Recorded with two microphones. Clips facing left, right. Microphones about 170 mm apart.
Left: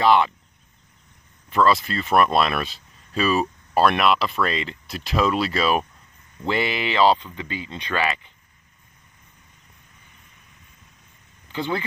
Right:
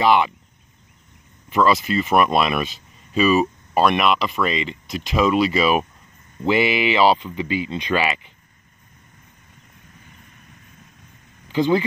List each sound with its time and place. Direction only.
0.0 s speech: 5° right (ahead or behind)
1.5 s speech: 5° right (ahead or behind)
11.5 s speech: 15° right (ahead or behind)